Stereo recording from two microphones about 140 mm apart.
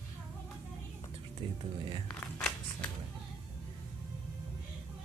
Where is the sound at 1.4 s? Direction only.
35° right (ahead or behind).